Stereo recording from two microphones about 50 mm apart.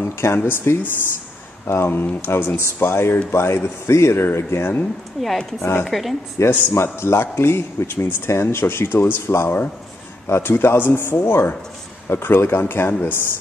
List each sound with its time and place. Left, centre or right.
0.0 s a man's voice: left
5.2 s a woman's voice: centre
5.6 s a man's voice: left
5.9 s a woman's voice: centre
6.5 s a man's voice: left